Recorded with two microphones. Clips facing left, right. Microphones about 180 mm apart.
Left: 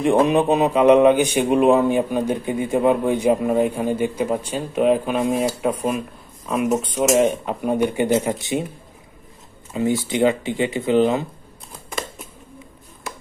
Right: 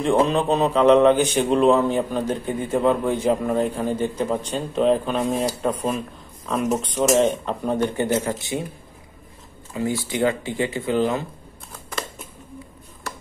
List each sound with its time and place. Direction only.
0.0 s a man's voice: 15° left (ahead or behind)
9.7 s speech: 20° left (ahead or behind)